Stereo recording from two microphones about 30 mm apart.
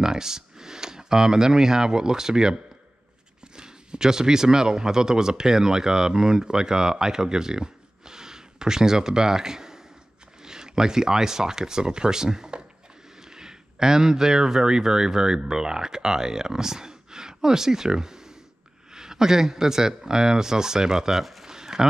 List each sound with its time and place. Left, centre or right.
0.0 s speech: centre
21.2 s speech: centre
21.5 s a sound: centre